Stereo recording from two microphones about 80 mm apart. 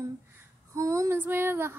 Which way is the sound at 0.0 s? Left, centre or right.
Right.